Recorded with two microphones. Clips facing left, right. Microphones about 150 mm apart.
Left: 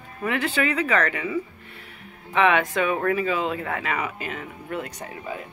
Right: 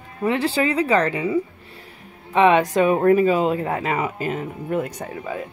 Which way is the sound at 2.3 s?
35° right (ahead or behind).